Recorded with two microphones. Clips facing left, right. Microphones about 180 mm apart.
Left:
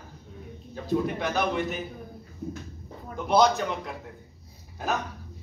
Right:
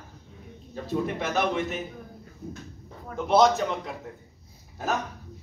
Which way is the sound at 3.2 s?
Centre (ahead or behind).